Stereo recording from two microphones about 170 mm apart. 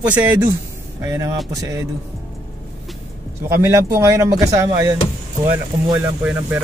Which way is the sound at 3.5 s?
15° right (ahead or behind).